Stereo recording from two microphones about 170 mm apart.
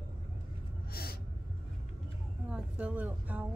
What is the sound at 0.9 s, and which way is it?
Gasp, 65° left (ahead or behind).